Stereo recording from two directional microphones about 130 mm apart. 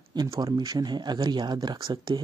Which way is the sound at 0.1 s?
35° right (ahead or behind).